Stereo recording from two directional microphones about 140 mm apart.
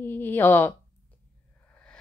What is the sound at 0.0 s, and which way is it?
Speech, 15° left (ahead or behind).